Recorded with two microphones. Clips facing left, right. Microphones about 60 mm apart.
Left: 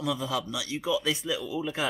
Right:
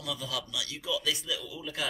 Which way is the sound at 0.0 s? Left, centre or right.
Left.